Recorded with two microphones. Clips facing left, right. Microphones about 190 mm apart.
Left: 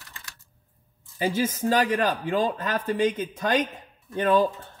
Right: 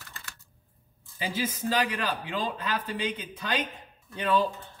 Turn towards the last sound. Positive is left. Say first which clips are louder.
# left 5 dB
turn(degrees=50)  # may be behind; listen again after turning